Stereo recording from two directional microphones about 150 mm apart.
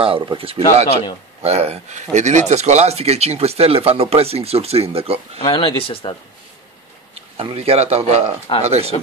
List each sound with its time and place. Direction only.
0.0 s speech: 35° right (ahead or behind)
5.4 s speech: 30° left (ahead or behind)
7.3 s speech: 40° right (ahead or behind)
8.5 s speech: 30° left (ahead or behind)